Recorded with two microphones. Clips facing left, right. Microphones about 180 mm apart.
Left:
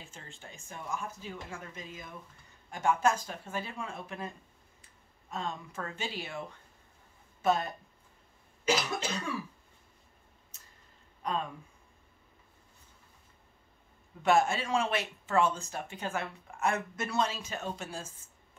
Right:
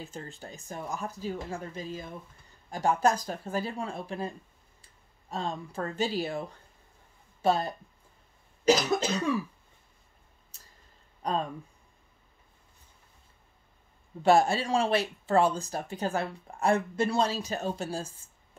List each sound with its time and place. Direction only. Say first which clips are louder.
0.0 s speech: right 9 dB; 40° right (ahead or behind)
11.2 s speech: right 4 dB; 35° right (ahead or behind)
14.2 s speech: right 4 dB; 35° right (ahead or behind)